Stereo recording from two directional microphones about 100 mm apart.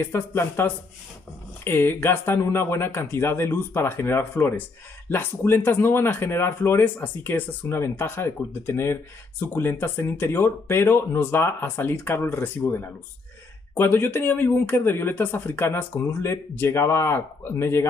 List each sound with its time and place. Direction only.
0.0 s speech: 25° left (ahead or behind)